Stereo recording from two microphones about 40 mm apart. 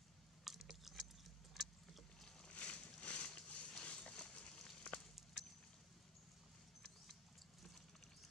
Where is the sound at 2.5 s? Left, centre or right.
Left.